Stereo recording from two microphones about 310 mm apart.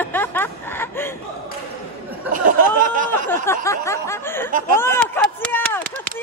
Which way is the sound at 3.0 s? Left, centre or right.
Centre.